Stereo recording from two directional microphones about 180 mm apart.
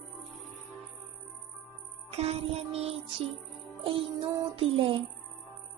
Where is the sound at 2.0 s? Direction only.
35° right (ahead or behind).